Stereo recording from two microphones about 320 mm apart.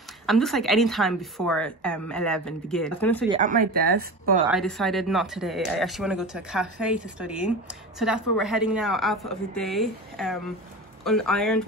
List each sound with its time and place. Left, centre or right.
0.3 s speech: centre
3.3 s speech: right
4.5 s speech: centre